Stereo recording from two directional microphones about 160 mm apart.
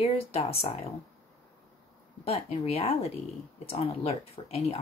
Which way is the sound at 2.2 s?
40° left (ahead or behind).